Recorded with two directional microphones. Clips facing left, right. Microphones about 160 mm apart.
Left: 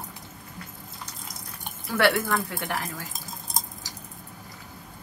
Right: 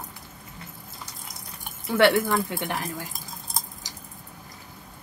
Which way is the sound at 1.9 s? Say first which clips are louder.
Right 3 dB; 20° right (ahead or behind).